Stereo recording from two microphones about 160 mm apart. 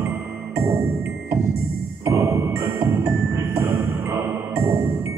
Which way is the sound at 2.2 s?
20° right (ahead or behind).